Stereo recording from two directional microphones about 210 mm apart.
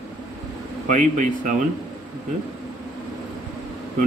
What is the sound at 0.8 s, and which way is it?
Speech, 35° right (ahead or behind).